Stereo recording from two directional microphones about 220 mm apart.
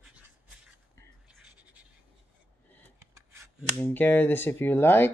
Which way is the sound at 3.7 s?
10° left (ahead or behind).